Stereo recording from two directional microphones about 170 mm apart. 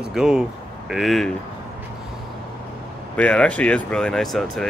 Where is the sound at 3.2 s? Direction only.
5° left (ahead or behind).